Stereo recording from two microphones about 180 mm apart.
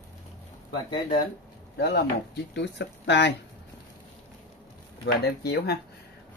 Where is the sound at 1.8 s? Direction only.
65° left (ahead or behind).